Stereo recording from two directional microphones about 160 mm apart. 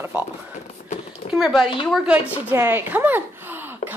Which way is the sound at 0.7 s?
40° left (ahead or behind).